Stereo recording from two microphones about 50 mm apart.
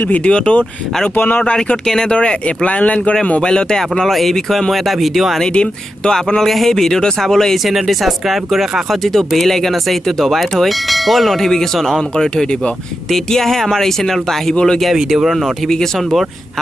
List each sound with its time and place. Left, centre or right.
0.1 s speech: left
1.1 s speech: left
1.4 s speech: left
1.9 s speech: centre
2.1 s speech: left
3.4 s speech: centre
5.5 s speech: centre
15.0 s speech: centre
15.4 s speech: centre